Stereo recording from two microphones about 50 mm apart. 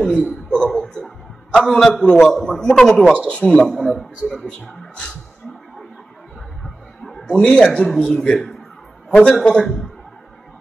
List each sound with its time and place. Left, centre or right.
0.0 s speech: centre
1.0 s a sound: centre
2.0 s a man's voice: centre
3.3 s speech: left
3.6 s speech: centre
4.5 s speech: centre
6.6 s a sound: centre
7.2 s a man's voice: centre